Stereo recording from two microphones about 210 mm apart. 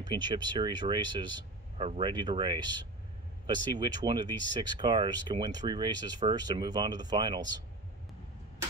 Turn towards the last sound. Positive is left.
turn(degrees=-20)  # may be behind; listen again after turning